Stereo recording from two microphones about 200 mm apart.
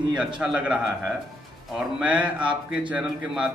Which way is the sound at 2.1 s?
25° right (ahead or behind).